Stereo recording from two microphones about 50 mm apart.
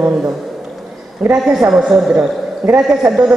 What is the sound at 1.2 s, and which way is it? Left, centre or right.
A woman's voice, centre.